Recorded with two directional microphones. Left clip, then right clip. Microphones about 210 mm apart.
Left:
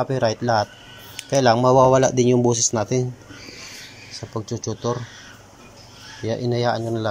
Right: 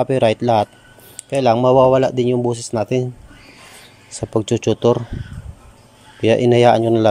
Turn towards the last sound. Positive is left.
turn(degrees=-60)  # may be behind; listen again after turning